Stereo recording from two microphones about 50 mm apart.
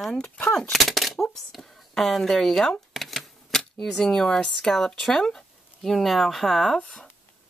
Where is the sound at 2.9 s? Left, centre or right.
Centre.